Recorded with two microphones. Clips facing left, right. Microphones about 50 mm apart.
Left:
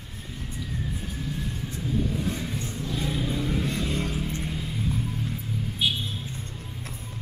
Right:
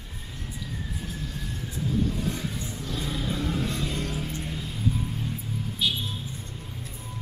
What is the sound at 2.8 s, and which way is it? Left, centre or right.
Vehicle, centre.